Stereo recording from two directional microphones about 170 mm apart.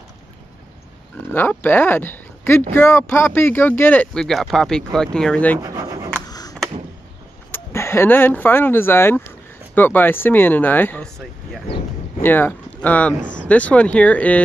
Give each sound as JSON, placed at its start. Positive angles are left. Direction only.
{"t": 1.3, "sound": "speech", "side_deg": 10}
{"t": 5.6, "sound": "pigeon", "side_deg": -20}
{"t": 6.2, "sound": "a sound", "side_deg": 20}
{"t": 7.5, "sound": "speech", "side_deg": 15}